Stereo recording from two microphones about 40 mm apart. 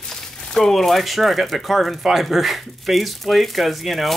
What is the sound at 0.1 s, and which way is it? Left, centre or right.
Speech, centre.